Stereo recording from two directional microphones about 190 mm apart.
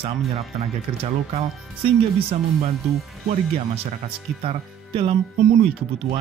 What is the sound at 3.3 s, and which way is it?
Speech, 35° right (ahead or behind).